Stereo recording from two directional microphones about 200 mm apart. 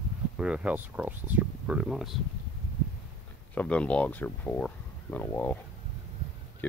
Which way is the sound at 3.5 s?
5° left (ahead or behind).